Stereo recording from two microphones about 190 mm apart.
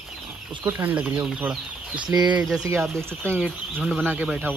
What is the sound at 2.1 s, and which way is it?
Speech, 20° right (ahead or behind).